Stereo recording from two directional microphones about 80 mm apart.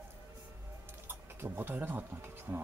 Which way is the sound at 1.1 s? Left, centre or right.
Right.